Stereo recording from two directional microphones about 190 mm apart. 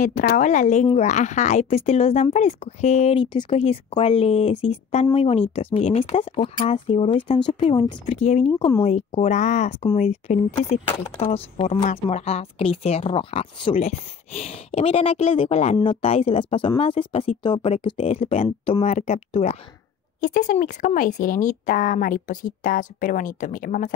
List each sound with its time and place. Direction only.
0.0 s speech: 45° left (ahead or behind)